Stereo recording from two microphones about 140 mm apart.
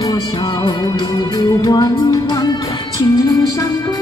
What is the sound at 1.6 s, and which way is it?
Music, 30° left (ahead or behind).